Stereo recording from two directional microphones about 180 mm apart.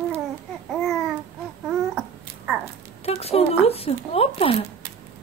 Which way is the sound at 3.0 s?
35° left (ahead or behind).